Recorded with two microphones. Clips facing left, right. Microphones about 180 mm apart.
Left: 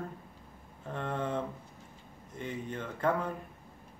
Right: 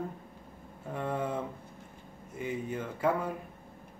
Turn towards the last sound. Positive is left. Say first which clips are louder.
# right 1 dB
turn(degrees=-10)  # may be behind; listen again after turning